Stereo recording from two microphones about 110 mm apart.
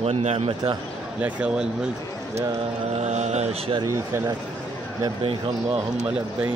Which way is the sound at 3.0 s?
90° right.